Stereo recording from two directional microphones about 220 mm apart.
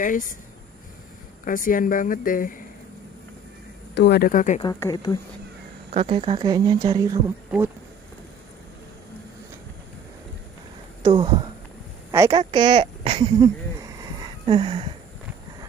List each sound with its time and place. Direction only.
0.0 s speech: 40° left (ahead or behind)
1.4 s speech: 40° left (ahead or behind)
3.9 s speech: 50° left (ahead or behind)
4.6 s speech: 15° left (ahead or behind)
5.9 s speech: 25° right (ahead or behind)
11.0 s speech: 20° right (ahead or behind)